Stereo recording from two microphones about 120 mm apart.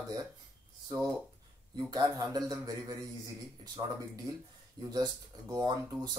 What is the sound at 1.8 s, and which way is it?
Speech, 35° right (ahead or behind).